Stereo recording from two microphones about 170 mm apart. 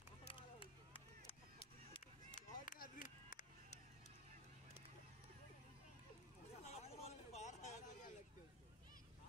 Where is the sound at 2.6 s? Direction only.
50° left (ahead or behind).